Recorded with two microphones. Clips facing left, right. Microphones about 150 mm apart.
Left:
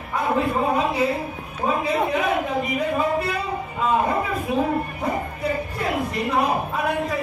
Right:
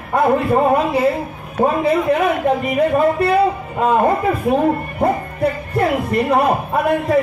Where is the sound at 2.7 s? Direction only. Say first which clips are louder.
Right 7 dB; 55° right (ahead or behind).